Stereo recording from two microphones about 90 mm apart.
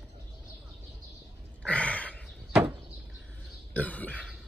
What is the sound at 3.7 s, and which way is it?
Throat clearing, 15° left (ahead or behind).